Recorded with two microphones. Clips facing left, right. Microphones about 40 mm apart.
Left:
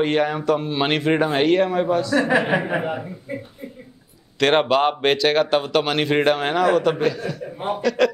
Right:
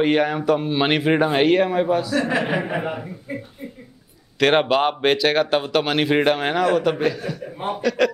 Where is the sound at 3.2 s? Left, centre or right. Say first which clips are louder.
Even; centre.